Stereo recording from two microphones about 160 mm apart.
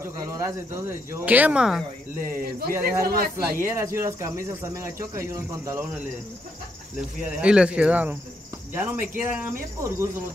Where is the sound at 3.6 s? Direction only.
15° right (ahead or behind).